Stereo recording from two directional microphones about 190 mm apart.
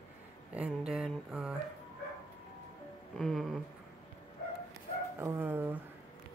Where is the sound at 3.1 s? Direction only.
Centre (ahead or behind).